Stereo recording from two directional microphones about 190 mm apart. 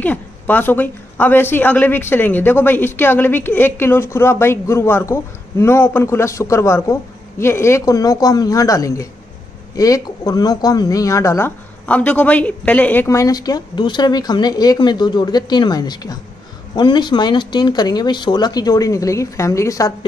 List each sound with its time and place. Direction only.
0.0 s a woman's voice: 10° left (ahead or behind)